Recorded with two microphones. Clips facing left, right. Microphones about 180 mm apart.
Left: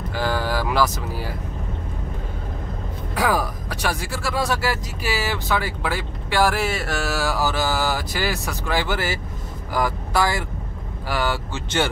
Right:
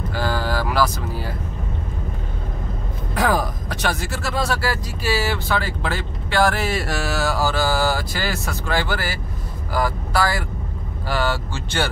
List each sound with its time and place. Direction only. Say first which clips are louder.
0.1 s vehicle: even; 15° left (ahead or behind)
3.2 s speech: right 1 dB; 10° left (ahead or behind)